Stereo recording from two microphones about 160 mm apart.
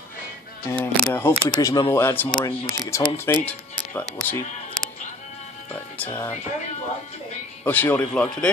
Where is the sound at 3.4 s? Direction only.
10° left (ahead or behind).